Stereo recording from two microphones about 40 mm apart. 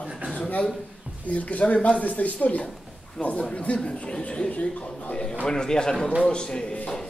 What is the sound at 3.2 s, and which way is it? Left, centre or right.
Speech, centre.